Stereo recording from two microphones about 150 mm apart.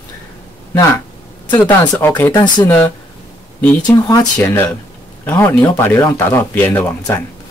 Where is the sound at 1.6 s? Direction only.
15° left (ahead or behind).